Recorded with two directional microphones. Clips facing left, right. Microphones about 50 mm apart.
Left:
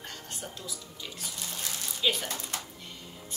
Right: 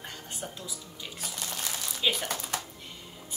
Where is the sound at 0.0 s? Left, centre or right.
Centre.